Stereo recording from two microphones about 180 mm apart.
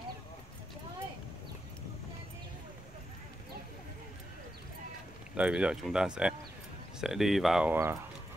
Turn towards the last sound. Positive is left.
turn(degrees=-10)  # may be behind; listen again after turning